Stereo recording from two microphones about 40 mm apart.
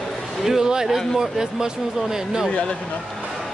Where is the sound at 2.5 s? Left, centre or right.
Left.